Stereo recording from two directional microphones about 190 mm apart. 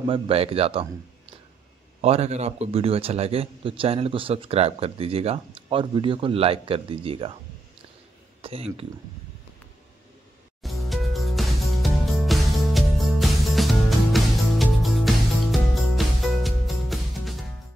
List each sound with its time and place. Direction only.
0.0 s a man's voice: 30° right (ahead or behind)
8.4 s speech: 30° right (ahead or behind)
10.6 s music: centre (ahead or behind)